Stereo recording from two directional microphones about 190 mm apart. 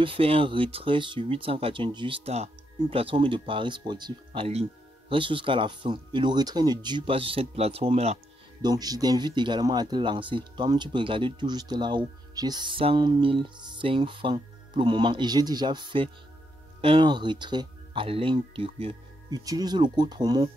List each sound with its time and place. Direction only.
0.0 s speech: 30° right (ahead or behind)
8.6 s speech: 20° right (ahead or behind)